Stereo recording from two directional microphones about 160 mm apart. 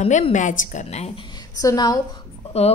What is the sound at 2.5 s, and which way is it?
Speech, 40° left (ahead or behind).